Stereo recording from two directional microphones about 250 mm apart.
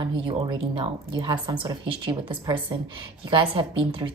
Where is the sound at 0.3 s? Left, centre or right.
Centre.